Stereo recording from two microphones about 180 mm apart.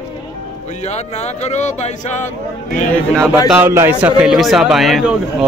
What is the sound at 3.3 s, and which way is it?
A man's voice, 10° right (ahead or behind).